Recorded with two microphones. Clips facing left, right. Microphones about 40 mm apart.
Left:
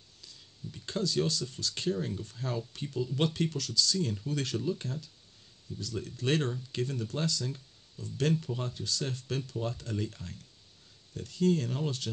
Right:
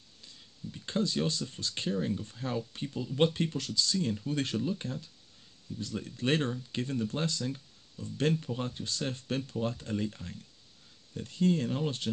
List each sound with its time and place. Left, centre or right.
0.8 s speech: right
2.0 s speech: centre
6.0 s speech: right
11.1 s speech: right